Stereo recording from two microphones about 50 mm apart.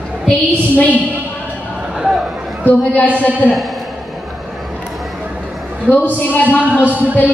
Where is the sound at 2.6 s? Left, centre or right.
Left.